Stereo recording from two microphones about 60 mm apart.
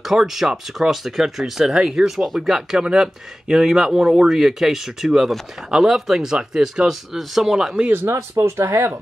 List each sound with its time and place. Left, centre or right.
0.0 s speech: centre
8.1 s speech: right